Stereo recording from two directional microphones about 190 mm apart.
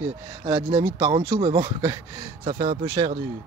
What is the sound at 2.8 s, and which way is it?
Speech, 20° right (ahead or behind).